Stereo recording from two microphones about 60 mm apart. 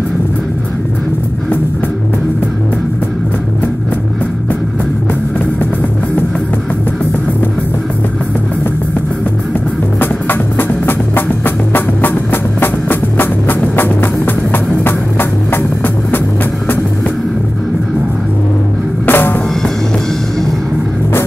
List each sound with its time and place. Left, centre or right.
9.9 s music: left
19.0 s drum kit: left